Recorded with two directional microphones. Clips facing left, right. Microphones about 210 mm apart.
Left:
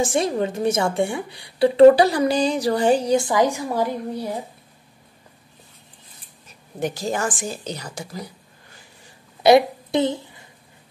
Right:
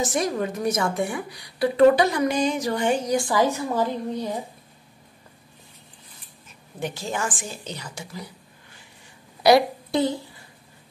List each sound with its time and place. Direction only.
0.0 s a woman's voice: 30° left (ahead or behind); by 4.4 s 10° left (ahead or behind)
6.8 s a woman's voice: 40° left (ahead or behind)
9.4 s a woman's voice: 20° left (ahead or behind)